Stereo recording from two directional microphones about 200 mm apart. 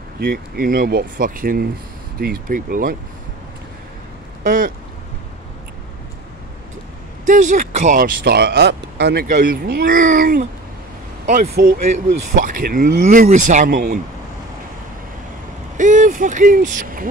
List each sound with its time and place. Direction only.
0.2 s speech: 45° right (ahead or behind)
4.4 s a sound: 45° right (ahead or behind)
7.2 s speech: 40° right (ahead or behind)
15.8 s speech: 40° right (ahead or behind)